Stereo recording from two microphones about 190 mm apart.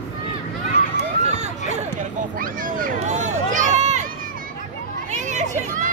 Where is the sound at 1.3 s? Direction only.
35° right (ahead or behind).